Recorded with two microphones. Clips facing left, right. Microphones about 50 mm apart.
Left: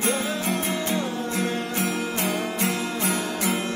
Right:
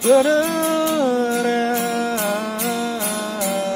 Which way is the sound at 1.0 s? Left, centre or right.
Right.